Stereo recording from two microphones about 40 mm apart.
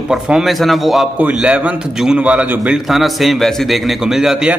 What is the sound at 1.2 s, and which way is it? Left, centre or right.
A man's voice, right.